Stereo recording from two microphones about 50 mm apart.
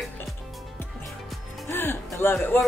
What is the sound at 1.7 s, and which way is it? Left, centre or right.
Speech, left.